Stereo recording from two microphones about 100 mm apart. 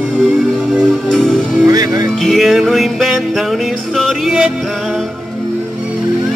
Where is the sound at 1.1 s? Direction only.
5° left (ahead or behind).